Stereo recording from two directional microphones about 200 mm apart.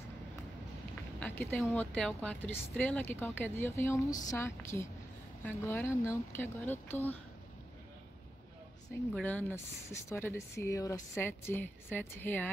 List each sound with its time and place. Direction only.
1.2 s speech: 5° left (ahead or behind)
9.1 s speech: 5° left (ahead or behind)